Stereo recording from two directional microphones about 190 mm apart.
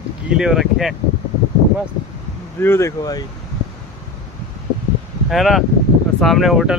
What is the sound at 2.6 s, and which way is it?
Speech, 15° left (ahead or behind).